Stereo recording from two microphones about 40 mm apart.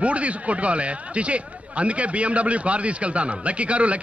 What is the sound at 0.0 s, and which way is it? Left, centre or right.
A man's voice, right.